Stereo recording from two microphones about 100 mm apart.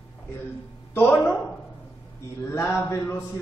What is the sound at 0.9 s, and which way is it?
Speech, 20° left (ahead or behind).